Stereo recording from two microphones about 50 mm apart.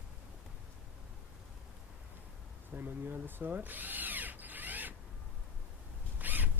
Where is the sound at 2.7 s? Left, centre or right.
Right.